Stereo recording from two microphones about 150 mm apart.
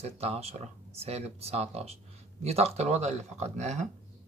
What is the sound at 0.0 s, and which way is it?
Speech, 45° right (ahead or behind).